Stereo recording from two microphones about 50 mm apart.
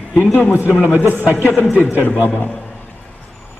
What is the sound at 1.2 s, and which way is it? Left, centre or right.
Speech, right.